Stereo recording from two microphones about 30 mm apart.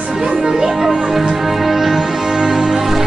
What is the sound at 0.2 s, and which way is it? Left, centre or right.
Music, centre.